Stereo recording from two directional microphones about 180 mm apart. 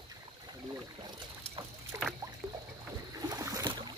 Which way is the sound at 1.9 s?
15° right (ahead or behind).